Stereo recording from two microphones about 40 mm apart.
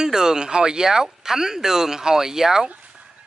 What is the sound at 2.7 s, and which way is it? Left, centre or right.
Dog, right.